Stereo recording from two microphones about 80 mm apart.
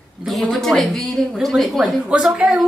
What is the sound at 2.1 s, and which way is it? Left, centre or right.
Speech, centre.